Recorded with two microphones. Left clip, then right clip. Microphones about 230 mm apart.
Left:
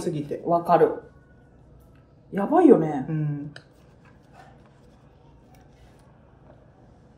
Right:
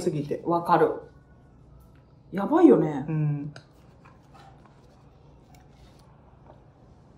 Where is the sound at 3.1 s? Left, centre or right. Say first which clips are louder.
Left 1 dB; right.